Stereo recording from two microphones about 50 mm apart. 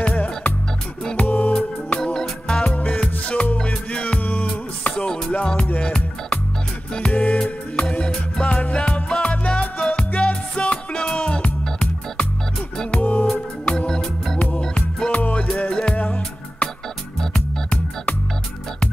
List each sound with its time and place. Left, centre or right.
0.0 s music: left
2.1 s music: centre
2.6 s music: left
13.7 s music: centre
15.0 s music: left